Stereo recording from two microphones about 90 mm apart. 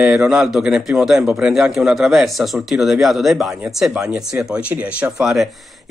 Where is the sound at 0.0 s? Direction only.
10° right (ahead or behind).